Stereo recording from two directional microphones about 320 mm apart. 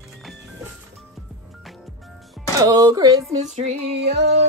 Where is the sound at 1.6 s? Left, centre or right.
Centre.